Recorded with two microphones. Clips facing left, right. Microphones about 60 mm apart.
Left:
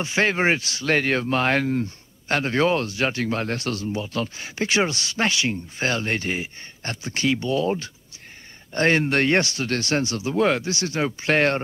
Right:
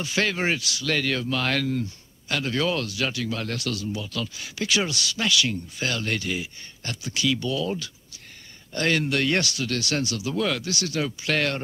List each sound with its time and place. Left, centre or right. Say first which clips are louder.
0.0 s speech: left 4 dB; left